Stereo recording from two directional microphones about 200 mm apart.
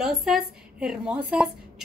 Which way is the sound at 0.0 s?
Centre (ahead or behind).